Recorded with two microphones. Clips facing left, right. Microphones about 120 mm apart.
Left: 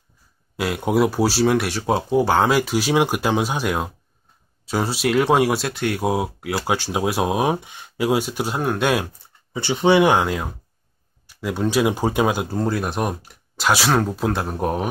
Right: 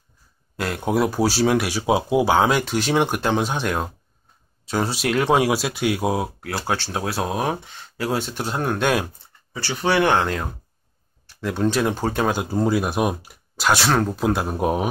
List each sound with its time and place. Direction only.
0.6 s speech: 5° left (ahead or behind)
9.5 s speech: 20° left (ahead or behind); by 14.9 s 5° right (ahead or behind)